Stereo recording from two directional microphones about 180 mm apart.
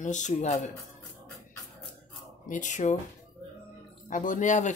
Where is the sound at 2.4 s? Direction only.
45° left (ahead or behind).